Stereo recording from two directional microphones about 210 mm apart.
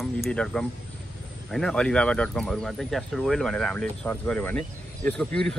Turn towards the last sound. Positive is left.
turn(degrees=5)  # may be behind; listen again after turning